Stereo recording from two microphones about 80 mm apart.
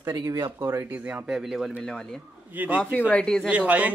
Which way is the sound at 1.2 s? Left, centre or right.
Centre.